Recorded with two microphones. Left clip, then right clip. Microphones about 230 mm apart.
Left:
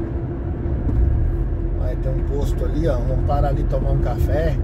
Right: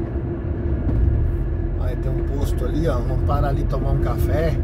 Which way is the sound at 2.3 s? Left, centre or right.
Right.